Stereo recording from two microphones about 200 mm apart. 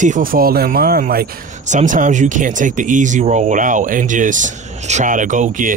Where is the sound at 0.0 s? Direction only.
40° right (ahead or behind).